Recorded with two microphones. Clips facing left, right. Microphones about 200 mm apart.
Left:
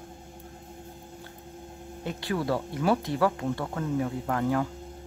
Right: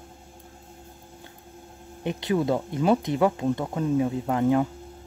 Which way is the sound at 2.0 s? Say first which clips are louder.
Right 5 dB; 20° right (ahead or behind).